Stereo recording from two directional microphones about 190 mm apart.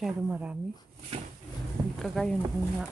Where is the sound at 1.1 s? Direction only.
30° right (ahead or behind).